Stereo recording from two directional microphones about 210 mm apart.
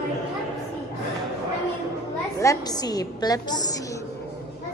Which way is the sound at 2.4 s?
15° left (ahead or behind).